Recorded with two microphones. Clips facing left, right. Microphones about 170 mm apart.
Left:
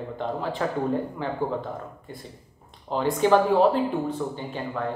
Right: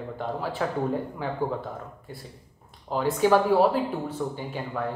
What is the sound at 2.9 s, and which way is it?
Speech, 5° right (ahead or behind).